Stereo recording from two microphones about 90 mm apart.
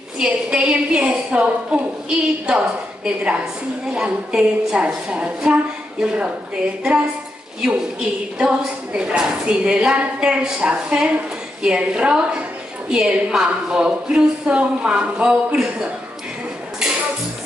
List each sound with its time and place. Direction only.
0.2 s a woman's voice: 10° right (ahead or behind)